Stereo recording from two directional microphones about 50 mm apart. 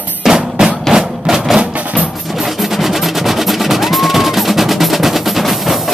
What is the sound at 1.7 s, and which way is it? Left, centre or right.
Music, right.